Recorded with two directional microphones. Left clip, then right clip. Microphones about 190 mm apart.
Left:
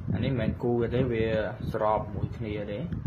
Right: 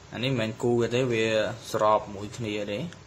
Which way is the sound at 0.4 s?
15° right (ahead or behind).